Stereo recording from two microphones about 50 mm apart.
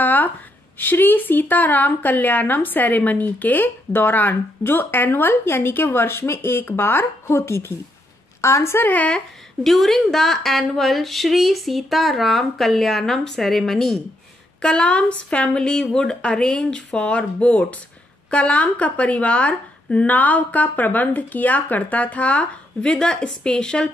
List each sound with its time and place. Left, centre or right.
0.0 s a sound: left
0.7 s a woman's voice: left
6.7 s a woman's voice: left
7.2 s a woman's voice: left
8.4 s a woman's voice: left
8.7 s speech: left
9.6 s speech: centre
14.6 s a woman's voice: centre